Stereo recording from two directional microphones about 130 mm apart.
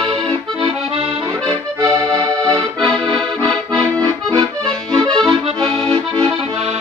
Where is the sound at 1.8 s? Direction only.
30° right (ahead or behind).